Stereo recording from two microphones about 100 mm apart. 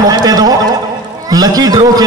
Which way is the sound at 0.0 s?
40° right (ahead or behind).